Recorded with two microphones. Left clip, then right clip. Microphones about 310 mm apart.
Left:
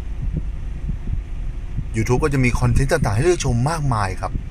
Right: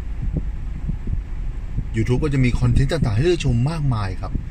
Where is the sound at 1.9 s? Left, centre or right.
Centre.